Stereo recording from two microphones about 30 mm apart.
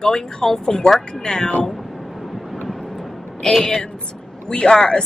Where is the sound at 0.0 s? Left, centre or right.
Centre.